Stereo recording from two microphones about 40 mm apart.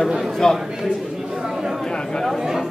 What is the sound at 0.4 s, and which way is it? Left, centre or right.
Speech, centre.